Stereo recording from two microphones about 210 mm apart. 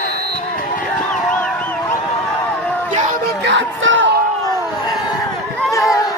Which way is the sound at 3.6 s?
65° right (ahead or behind).